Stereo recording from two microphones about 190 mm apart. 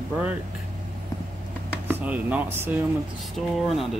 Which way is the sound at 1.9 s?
10° right (ahead or behind).